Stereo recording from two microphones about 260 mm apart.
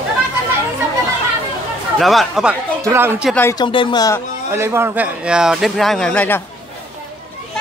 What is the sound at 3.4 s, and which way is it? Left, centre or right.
Speech, centre.